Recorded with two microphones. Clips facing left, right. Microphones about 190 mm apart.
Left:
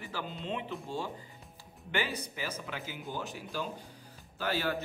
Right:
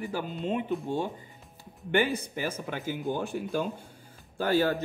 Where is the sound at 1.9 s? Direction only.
50° right (ahead or behind).